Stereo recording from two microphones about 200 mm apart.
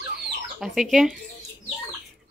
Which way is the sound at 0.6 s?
Centre (ahead or behind).